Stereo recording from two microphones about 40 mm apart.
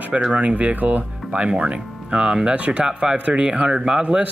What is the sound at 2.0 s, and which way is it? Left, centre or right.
Speech, right.